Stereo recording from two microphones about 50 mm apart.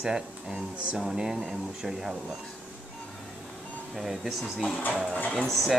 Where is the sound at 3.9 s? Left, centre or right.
Centre.